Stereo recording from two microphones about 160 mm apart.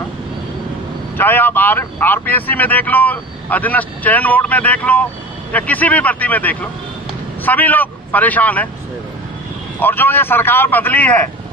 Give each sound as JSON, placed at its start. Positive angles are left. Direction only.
{"t": 1.1, "sound": "a man's voice", "side_deg": 15}
{"t": 9.8, "sound": "speech", "side_deg": 10}